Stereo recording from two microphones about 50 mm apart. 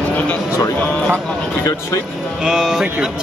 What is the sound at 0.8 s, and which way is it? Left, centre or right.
Speech, left.